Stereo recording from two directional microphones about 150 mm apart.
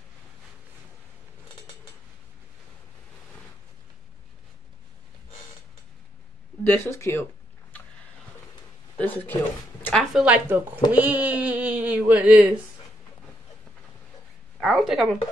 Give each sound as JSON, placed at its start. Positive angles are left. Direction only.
{"t": 6.6, "sound": "speech", "side_deg": 15}
{"t": 8.9, "sound": "speech", "side_deg": 15}
{"t": 9.8, "sound": "speech", "side_deg": 0}
{"t": 10.2, "sound": "speech", "side_deg": -10}
{"t": 14.6, "sound": "a sound", "side_deg": 0}